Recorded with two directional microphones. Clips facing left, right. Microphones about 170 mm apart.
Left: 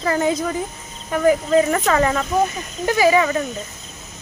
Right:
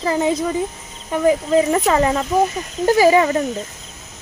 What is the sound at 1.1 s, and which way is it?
Speech, 20° right (ahead or behind).